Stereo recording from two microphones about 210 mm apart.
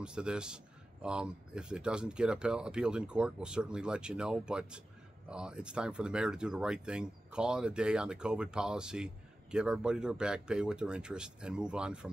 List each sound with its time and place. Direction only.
0.0 s speech: 5° right (ahead or behind)